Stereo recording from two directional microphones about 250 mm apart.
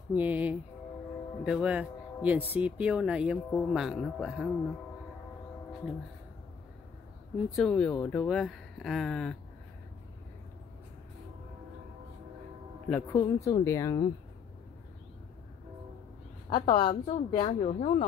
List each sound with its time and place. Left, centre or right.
0.1 s speech: centre
7.5 s speech: centre
12.9 s speech: centre
16.4 s a woman's voice: centre